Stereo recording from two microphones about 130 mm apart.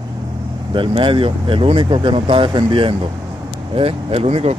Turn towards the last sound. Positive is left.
turn(degrees=-50)  # may be behind; listen again after turning